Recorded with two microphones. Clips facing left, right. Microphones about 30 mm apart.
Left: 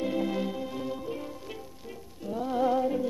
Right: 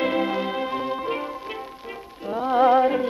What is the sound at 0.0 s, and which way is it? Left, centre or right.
Music, right.